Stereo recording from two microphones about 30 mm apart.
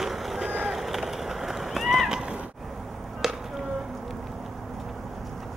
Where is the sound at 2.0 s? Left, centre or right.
Right.